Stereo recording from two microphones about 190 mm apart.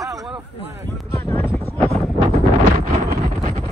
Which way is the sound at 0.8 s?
15° left (ahead or behind).